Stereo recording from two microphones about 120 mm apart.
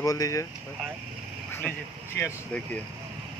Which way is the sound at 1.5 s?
20° left (ahead or behind).